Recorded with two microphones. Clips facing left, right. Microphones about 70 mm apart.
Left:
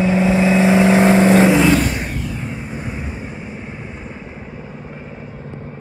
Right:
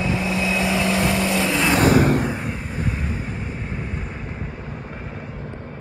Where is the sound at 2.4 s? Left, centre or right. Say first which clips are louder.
Left 1 dB; centre.